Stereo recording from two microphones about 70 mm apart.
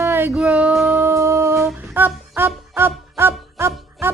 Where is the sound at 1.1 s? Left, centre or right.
Right.